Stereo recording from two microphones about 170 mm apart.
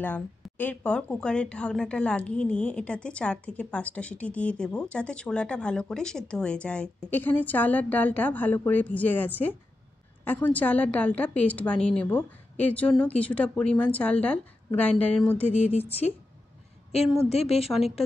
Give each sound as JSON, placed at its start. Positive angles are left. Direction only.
{"t": 0.0, "sound": "a woman's voice", "side_deg": 10}
{"t": 15.4, "sound": "speech", "side_deg": 40}
{"t": 17.2, "sound": "speech", "side_deg": 35}